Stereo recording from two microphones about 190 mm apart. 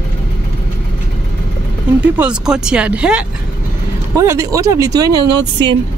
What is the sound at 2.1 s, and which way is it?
Speech, 5° right (ahead or behind).